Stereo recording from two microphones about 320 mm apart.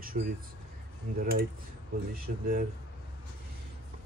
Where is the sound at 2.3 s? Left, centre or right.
Right.